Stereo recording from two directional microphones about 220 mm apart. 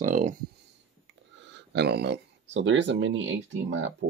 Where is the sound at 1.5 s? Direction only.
50° right (ahead or behind).